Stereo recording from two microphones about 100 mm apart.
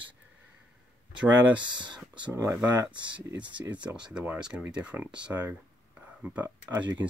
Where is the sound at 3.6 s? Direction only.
15° right (ahead or behind).